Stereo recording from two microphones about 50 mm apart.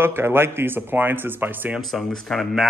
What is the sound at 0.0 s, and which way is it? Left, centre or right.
A man's voice, right.